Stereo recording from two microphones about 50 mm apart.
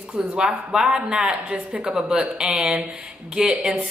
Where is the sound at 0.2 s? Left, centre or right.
Centre.